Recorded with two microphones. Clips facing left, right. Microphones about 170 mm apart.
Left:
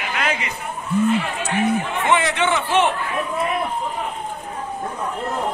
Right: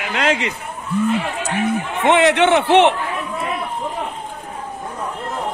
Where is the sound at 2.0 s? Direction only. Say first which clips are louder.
Right 7 dB; 65° right (ahead or behind).